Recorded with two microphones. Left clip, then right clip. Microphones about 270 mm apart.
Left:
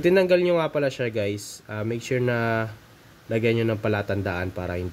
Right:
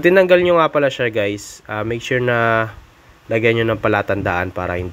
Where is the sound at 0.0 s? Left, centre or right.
Centre.